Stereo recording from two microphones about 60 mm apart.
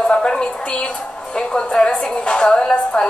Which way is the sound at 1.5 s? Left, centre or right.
Centre.